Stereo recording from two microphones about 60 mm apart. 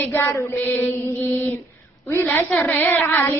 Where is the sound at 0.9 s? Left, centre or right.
Left.